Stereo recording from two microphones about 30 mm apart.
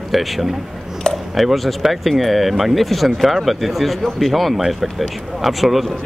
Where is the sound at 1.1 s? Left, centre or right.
Left.